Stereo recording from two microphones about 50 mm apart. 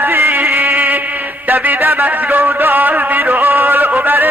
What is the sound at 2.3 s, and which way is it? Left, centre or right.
A man's voice, right.